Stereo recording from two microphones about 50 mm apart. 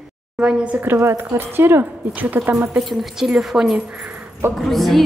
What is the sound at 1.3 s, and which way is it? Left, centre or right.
Speech, right.